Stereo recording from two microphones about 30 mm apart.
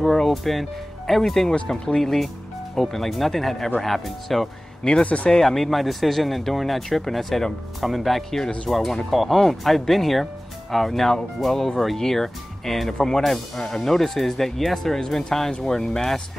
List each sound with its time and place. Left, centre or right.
0.3 s speech: centre
5.0 s speech: left
5.3 s speech: centre
5.7 s speech: centre